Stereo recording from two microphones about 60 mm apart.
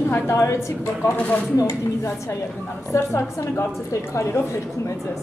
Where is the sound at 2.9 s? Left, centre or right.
Left.